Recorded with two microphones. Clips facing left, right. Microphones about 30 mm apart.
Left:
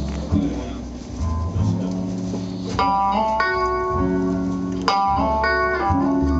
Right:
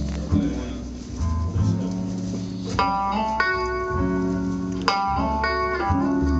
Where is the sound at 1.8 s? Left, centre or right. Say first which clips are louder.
Left 2 dB; centre.